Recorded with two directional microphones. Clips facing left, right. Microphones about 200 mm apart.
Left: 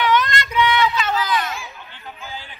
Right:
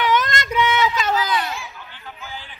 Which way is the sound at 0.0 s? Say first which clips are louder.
Left 1 dB; 45° right (ahead or behind).